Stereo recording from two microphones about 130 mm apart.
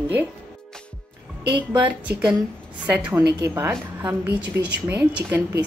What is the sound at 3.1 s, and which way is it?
A woman's voice, 20° right (ahead or behind).